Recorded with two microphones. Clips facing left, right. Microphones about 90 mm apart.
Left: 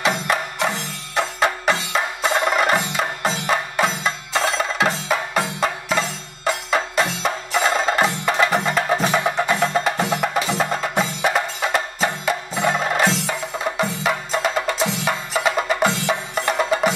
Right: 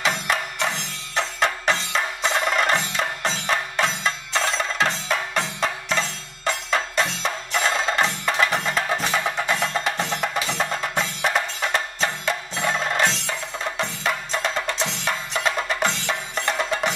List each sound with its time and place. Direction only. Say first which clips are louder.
0.0 s music: left 3 dB; 5° left (ahead or behind)